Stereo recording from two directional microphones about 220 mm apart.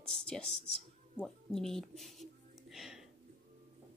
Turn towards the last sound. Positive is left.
turn(degrees=0)  # may be behind; listen again after turning